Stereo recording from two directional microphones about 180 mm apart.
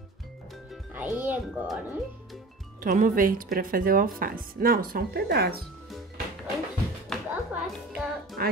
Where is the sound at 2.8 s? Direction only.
50° right (ahead or behind).